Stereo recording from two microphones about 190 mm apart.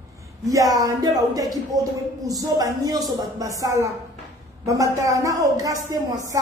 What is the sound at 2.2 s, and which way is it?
A woman's voice, 20° right (ahead or behind).